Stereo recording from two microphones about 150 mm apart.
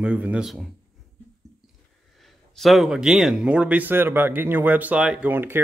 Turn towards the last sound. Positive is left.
turn(degrees=-15)  # may be behind; listen again after turning